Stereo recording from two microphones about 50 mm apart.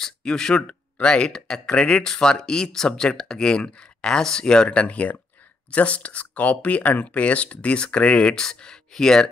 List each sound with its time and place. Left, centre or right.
0.0 s speech: centre